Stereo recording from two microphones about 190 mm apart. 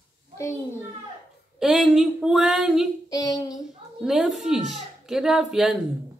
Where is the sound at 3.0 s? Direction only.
20° left (ahead or behind).